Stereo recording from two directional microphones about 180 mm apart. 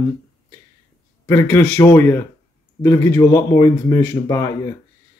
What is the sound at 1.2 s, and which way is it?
Speech, 15° left (ahead or behind).